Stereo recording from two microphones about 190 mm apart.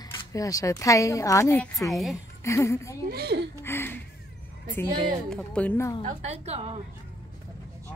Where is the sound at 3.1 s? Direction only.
60° right (ahead or behind).